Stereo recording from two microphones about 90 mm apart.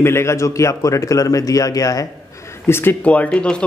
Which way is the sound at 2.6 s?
25° left (ahead or behind).